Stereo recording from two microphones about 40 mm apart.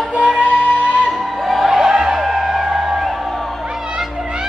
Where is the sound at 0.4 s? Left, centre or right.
Right.